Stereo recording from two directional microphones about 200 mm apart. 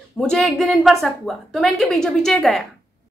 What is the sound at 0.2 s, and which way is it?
A woman's voice, centre (ahead or behind).